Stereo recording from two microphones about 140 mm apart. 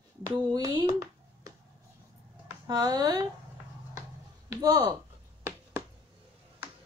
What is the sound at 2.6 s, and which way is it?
Speech, 30° right (ahead or behind).